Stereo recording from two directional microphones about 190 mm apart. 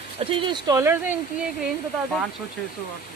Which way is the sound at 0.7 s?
10° right (ahead or behind).